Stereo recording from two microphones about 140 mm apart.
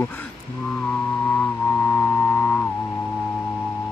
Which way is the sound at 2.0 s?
10° left (ahead or behind).